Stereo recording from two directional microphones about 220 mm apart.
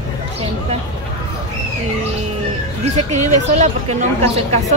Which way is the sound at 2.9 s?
30° right (ahead or behind).